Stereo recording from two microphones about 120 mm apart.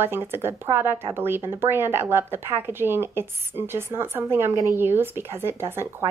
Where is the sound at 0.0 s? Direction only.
20° right (ahead or behind).